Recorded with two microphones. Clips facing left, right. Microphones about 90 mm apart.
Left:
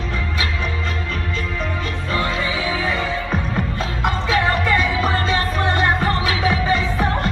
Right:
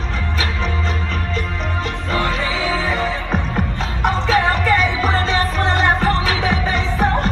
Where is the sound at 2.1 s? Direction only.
30° right (ahead or behind).